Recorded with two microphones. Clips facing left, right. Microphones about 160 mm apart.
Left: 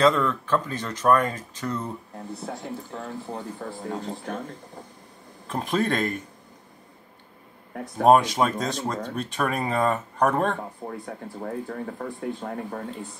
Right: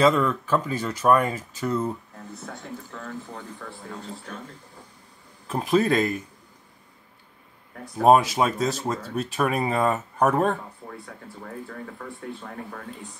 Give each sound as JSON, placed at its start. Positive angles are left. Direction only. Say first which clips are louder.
{"t": 0.0, "sound": "speech", "louder": "right 1 dB", "side_deg": -10}
{"t": 2.4, "sound": "speech", "louder": "left 3 dB", "side_deg": 35}
{"t": 5.5, "sound": "speech", "louder": "right 4 dB", "side_deg": -5}
{"t": 8.0, "sound": "speech", "louder": "even", "side_deg": -5}
{"t": 10.9, "sound": "speech", "louder": "left 5 dB", "side_deg": 35}